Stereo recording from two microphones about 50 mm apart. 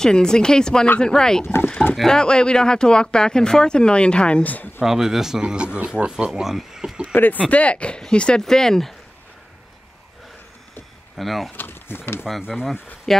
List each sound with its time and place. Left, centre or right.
0.0 s speech: centre
1.6 s speech: left
2.0 s speech: centre; by 4.8 s left
4.8 s speech: centre
5.4 s speech: centre
7.1 s a sound: left
7.4 s speech: left; by 8.9 s centre
11.1 s speech: centre
11.5 s speech: left
12.3 s speech: centre